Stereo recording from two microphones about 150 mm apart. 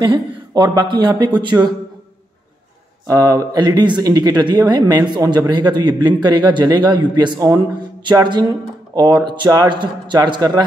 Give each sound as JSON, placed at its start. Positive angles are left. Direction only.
{"t": 0.0, "sound": "speech", "side_deg": -30}
{"t": 3.1, "sound": "speech", "side_deg": -20}